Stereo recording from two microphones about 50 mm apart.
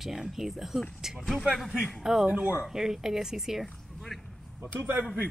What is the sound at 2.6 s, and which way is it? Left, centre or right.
A woman's voice, centre.